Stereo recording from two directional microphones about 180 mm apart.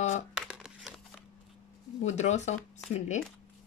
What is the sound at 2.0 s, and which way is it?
Speech, 40° left (ahead or behind).